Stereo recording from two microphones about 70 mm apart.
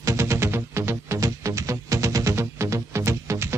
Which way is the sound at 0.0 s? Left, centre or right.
Right.